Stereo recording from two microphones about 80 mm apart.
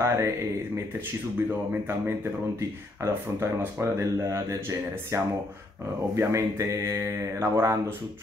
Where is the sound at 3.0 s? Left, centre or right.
Right.